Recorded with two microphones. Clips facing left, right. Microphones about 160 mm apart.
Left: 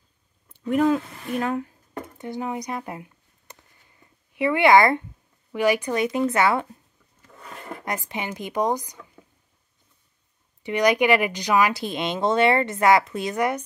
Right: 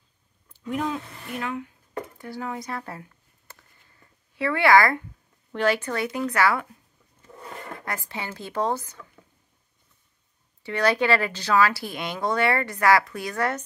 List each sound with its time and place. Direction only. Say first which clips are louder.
0.5 s a sound: left 8 dB; 55° left (ahead or behind)
1.4 s speech: left 5 dB; 40° left (ahead or behind)
2.1 s a sound: left 7 dB; 20° left (ahead or behind)
4.3 s speech: left 2 dB; 15° left (ahead or behind)
7.7 s speech: left 5 dB; 20° left (ahead or behind)
10.6 s speech: left 3 dB; 15° left (ahead or behind)